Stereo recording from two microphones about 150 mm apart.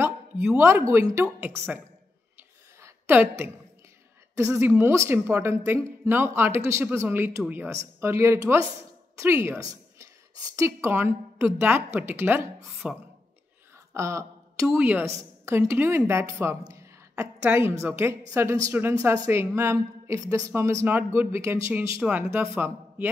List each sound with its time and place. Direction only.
0.6 s a woman's voice: 15° right (ahead or behind)
2.8 s a sound: 15° right (ahead or behind)
4.4 s a woman's voice: 20° right (ahead or behind)
13.9 s a woman's voice: 20° right (ahead or behind)